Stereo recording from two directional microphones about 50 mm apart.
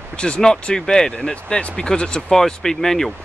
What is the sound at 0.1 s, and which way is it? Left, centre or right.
Speech, centre.